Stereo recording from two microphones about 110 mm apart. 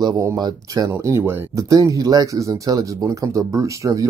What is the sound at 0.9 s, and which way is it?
Speech, 25° right (ahead or behind).